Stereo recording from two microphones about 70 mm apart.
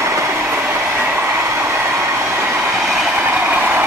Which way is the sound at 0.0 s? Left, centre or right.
Right.